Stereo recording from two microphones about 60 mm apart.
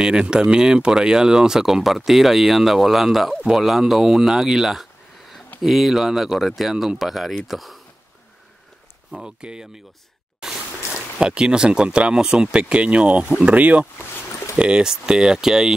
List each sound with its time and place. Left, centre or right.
0.0 s speech: centre
9.1 s speech: centre
10.4 s a sound: centre
10.9 s speech: centre